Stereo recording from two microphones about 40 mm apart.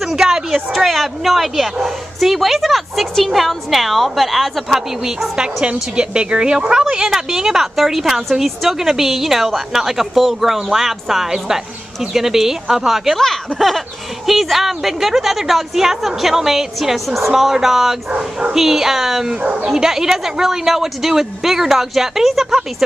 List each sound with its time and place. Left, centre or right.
0.1 s a woman's voice: centre
0.7 s speech: centre
5.4 s a woman's voice: right
13.2 s a woman's voice: centre
19.4 s speech: right
19.7 s a woman's voice: centre